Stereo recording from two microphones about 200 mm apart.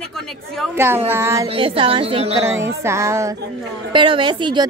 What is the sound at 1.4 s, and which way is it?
Speech, 25° right (ahead or behind).